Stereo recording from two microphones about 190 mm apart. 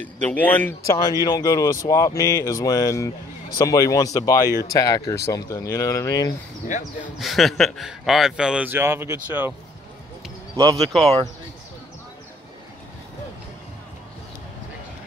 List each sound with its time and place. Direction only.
0.0 s speech: 10° left (ahead or behind)
7.2 s a man's voice: centre (ahead or behind)
10.5 s speech: 20° right (ahead or behind)